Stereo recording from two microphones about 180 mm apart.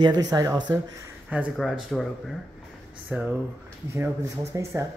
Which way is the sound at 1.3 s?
5° right (ahead or behind).